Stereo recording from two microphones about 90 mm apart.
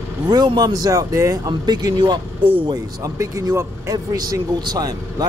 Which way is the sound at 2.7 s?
40° right (ahead or behind).